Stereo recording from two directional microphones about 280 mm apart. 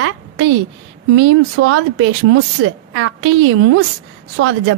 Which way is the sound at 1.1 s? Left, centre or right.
Right.